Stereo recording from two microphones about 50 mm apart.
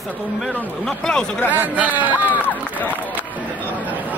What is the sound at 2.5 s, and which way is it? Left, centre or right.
Run, left.